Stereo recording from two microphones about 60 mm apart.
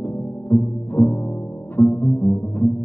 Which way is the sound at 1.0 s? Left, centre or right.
Left.